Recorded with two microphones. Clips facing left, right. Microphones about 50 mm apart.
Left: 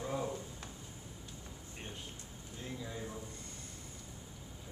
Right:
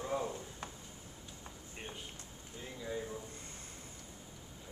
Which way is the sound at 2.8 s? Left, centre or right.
Centre.